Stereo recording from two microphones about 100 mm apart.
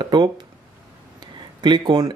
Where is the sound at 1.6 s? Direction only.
50° right (ahead or behind).